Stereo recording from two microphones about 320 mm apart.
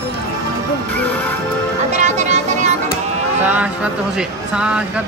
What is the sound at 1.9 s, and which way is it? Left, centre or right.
Music, right.